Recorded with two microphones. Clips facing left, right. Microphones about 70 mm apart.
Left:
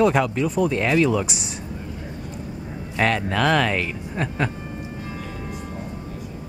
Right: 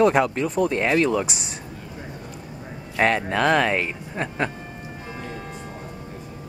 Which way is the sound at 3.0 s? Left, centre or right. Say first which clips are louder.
Right 1 dB; centre.